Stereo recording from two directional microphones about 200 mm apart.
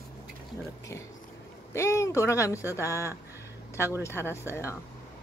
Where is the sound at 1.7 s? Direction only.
15° left (ahead or behind).